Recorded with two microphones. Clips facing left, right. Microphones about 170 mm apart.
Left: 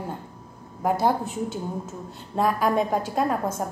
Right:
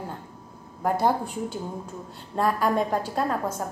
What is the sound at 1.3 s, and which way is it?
Speech, 45° left (ahead or behind).